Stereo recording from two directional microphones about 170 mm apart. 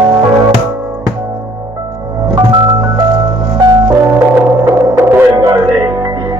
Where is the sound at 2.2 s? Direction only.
25° right (ahead or behind).